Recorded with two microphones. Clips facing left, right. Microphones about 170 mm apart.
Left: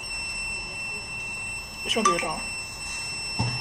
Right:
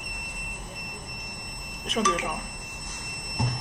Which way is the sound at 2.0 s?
15° left (ahead or behind).